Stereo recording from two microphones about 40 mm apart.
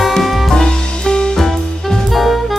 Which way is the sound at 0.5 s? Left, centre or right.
Centre.